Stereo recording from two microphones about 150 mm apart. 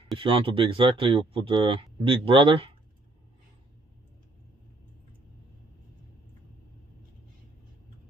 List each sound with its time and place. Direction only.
0.2 s speech: 35° right (ahead or behind)